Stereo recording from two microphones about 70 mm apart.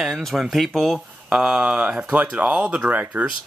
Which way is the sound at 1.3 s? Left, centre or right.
Centre.